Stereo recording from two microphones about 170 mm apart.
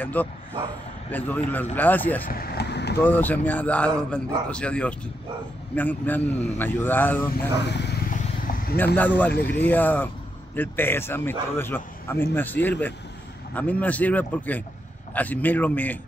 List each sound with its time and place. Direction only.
0.0 s a man's voice: 10° left (ahead or behind)
2.2 s speech: 60° left (ahead or behind)
3.0 s a man's voice: 10° left (ahead or behind)
7.6 s speech: 85° left
8.1 s vehicle: 55° left (ahead or behind)
8.7 s a man's voice: 10° left (ahead or behind)